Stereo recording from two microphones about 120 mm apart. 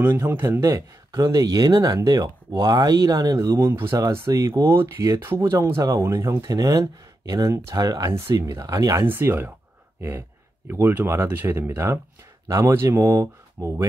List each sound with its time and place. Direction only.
0.0 s speech: 20° right (ahead or behind)